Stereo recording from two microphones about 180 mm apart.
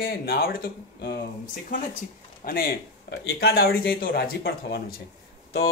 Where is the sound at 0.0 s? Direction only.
55° left (ahead or behind).